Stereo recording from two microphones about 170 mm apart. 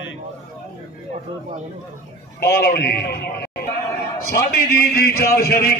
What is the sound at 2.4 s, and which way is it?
A man's voice, 70° left (ahead or behind).